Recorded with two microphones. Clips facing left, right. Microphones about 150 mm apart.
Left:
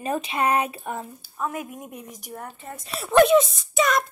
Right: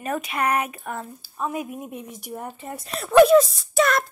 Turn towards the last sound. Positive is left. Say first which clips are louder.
# right 1 dB
turn(degrees=0)  # may be behind; listen again after turning